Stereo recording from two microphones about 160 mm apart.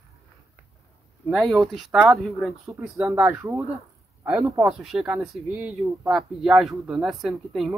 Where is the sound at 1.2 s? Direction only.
Centre (ahead or behind).